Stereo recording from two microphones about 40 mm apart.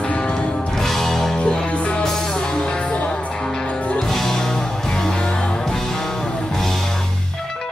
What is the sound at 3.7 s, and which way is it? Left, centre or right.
Music, left.